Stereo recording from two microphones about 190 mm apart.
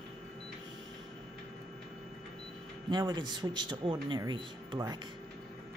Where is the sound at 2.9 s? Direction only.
20° right (ahead or behind).